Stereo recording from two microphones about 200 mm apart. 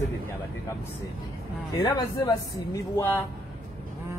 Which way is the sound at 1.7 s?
20° left (ahead or behind).